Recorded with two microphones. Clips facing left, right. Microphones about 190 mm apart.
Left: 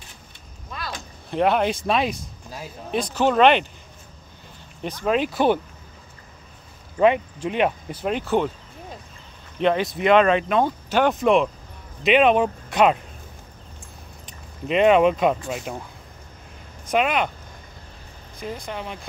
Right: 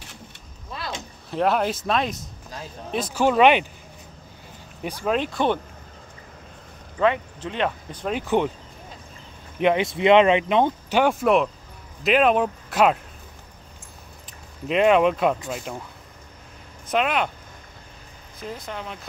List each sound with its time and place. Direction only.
0.7 s a sound: 25° right (ahead or behind)
1.3 s speech: centre (ahead or behind)
5.0 s speech: 5° left (ahead or behind)
7.0 s speech: 15° left (ahead or behind)
8.2 s speech: 15° right (ahead or behind)
9.6 s speech: 15° right (ahead or behind)
14.7 s speech: centre (ahead or behind)
16.9 s speech: 5° left (ahead or behind)
18.4 s speech: 5° left (ahead or behind)